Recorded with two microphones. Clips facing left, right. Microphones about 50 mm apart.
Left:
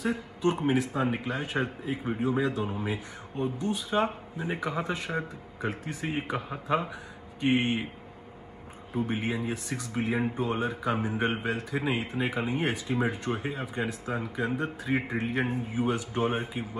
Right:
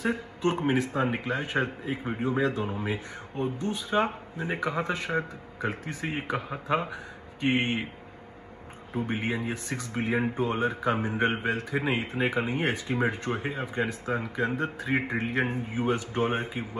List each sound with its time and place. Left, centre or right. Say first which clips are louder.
0.0 s speech: even; right
3.4 s speech: left 1 dB; right
5.1 s speech: right 5 dB; centre
5.7 s a man's voice: even; right
8.9 s a man's voice: even; right
10.3 s speech: right 2 dB; right